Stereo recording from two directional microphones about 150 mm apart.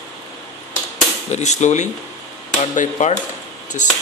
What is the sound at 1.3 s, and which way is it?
Speech, 50° left (ahead or behind).